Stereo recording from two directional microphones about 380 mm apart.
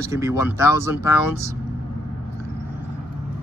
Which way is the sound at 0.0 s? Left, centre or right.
Centre.